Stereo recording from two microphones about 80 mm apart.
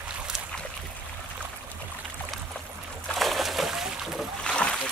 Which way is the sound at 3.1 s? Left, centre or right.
Centre.